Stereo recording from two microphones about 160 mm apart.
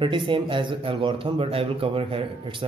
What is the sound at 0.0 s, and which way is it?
Speech, 30° right (ahead or behind).